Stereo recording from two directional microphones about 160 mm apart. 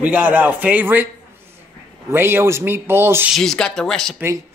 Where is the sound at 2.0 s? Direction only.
15° right (ahead or behind).